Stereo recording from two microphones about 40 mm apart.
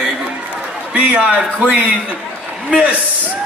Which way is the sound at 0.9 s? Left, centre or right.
Right.